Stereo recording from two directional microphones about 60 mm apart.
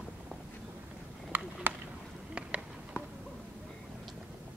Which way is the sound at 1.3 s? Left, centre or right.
Right.